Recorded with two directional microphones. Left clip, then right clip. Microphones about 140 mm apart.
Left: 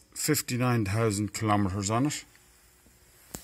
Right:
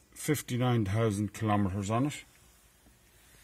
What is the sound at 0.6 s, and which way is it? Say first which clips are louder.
Speech: left 2 dB; 5° right (ahead or behind).